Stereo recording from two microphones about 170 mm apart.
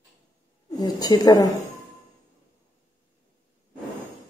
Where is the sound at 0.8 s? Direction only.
25° left (ahead or behind).